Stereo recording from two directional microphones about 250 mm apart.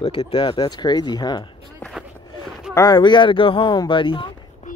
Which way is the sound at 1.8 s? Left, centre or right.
Centre.